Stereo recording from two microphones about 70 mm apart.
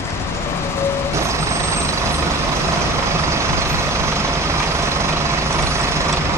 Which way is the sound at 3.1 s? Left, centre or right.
Right.